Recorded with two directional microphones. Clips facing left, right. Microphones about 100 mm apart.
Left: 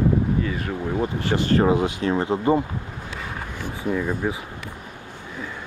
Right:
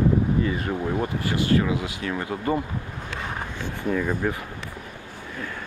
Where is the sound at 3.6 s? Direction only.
15° left (ahead or behind).